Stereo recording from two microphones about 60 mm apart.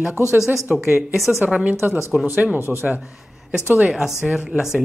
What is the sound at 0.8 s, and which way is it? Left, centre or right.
Speech, centre.